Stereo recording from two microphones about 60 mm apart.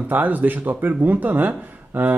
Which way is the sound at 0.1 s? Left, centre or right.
Right.